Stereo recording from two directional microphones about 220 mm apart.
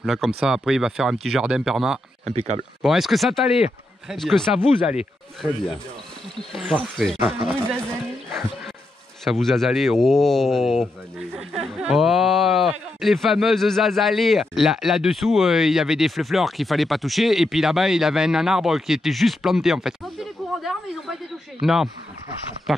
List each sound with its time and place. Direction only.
0.0 s speech: centre (ahead or behind)
2.2 s speech: 30° right (ahead or behind)
2.8 s speech: centre (ahead or behind)
6.5 s speech: centre (ahead or behind)
9.2 s speech: centre (ahead or behind)